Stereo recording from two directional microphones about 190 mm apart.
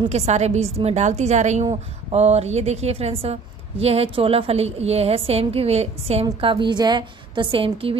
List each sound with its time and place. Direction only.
0.0 s a woman's voice: 35° right (ahead or behind)